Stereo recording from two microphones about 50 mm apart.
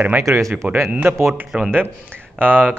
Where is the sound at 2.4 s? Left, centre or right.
Right.